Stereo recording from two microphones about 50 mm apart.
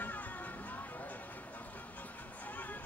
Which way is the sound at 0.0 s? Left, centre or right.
Left.